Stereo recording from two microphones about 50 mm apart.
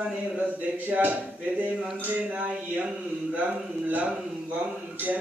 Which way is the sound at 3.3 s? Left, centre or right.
Right.